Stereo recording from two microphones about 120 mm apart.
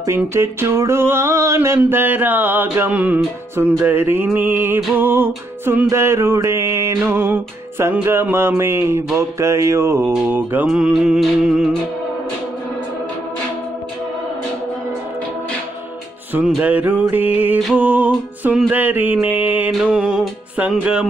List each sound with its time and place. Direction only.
0.0 s a sound: 20° right (ahead or behind)
10.2 s music: 15° right (ahead or behind)
10.7 s music: 5° right (ahead or behind)
16.3 s music: 10° right (ahead or behind)